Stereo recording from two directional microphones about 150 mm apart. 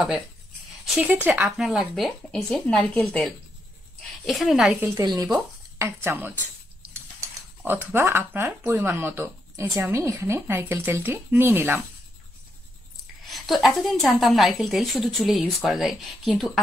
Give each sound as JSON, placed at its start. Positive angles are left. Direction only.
{"t": 0.8, "sound": "a woman's voice", "side_deg": -10}
{"t": 4.8, "sound": "speech", "side_deg": -25}
{"t": 7.6, "sound": "speech", "side_deg": -15}
{"t": 13.3, "sound": "a woman's voice", "side_deg": 0}